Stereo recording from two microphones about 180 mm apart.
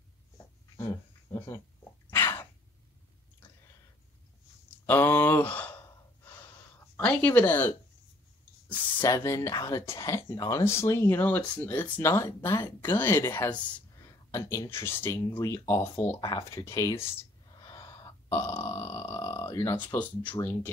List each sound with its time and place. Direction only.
0.7 s dog: 20° left (ahead or behind)
2.0 s sneeze: 15° left (ahead or behind)
3.4 s a sound: 10° left (ahead or behind)
4.8 s speech: 10° left (ahead or behind)
7.0 s a woman's voice: 10° left (ahead or behind)